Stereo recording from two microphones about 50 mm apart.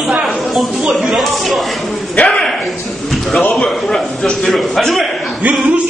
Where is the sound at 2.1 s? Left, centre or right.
Left.